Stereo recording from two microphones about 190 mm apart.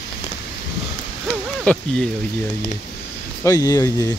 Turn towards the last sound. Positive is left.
turn(degrees=15)  # may be behind; listen again after turning